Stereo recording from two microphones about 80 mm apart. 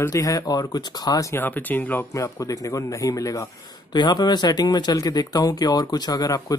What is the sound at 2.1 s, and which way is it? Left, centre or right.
A man's voice, left.